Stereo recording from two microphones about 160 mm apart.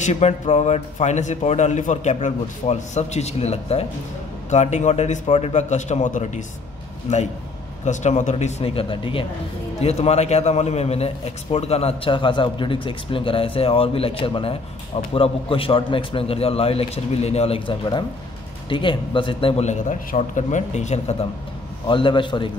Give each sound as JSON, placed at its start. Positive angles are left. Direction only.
{"t": 0.0, "sound": "a man's voice", "side_deg": 45}
{"t": 7.8, "sound": "a man's voice", "side_deg": 45}
{"t": 21.8, "sound": "a man's voice", "side_deg": 30}